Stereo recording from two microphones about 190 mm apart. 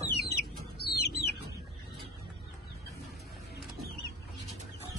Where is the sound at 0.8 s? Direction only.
60° left (ahead or behind).